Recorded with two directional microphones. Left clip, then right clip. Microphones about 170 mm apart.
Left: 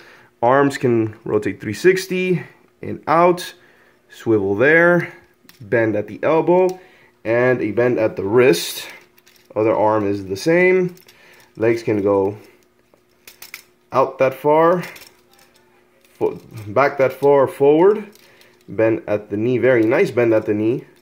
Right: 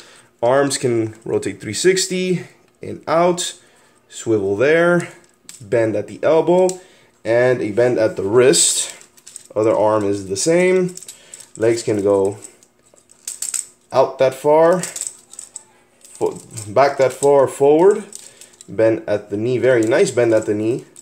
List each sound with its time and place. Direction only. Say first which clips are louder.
0.0 s speech: left 1 dB; 25° left (ahead or behind)
9.5 s speech: right 1 dB; 15° left (ahead or behind)
13.8 s speech: right 1 dB; 25° left (ahead or behind)
16.7 s speech: right 2 dB; 25° left (ahead or behind)